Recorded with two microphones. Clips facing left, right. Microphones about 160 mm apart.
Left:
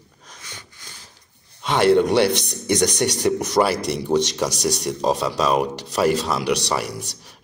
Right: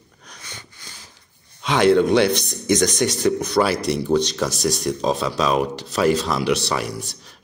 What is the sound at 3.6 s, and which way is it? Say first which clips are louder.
Speech: left 1 dB; 20° left (ahead or behind).